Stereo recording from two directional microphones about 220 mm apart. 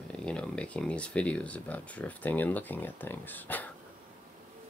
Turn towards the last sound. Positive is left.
turn(degrees=10)  # may be behind; listen again after turning